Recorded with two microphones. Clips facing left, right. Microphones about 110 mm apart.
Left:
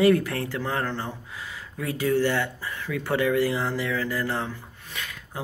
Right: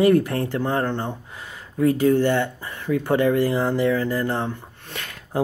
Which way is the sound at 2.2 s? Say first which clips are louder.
Right 4 dB; 25° right (ahead or behind).